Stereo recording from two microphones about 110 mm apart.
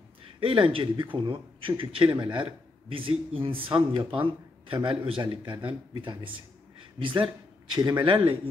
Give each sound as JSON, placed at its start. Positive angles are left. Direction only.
{"t": 0.4, "sound": "speech", "side_deg": -55}